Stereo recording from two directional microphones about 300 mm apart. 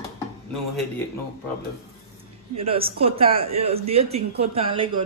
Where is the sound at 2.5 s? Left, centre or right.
Centre.